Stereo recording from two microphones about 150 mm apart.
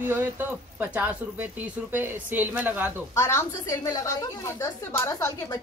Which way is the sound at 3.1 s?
20° left (ahead or behind).